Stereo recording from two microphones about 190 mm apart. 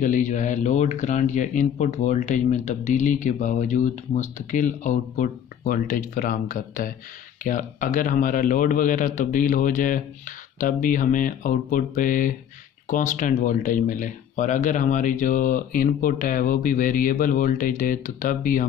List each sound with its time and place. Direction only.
0.0 s speech: 40° left (ahead or behind)